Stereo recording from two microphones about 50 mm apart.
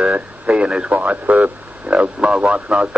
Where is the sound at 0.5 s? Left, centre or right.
Centre.